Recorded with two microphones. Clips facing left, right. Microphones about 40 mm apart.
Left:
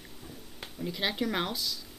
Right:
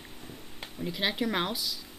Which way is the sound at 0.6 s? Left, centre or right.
Centre.